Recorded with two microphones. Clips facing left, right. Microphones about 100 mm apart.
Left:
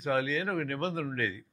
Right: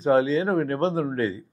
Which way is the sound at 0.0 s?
30° right (ahead or behind).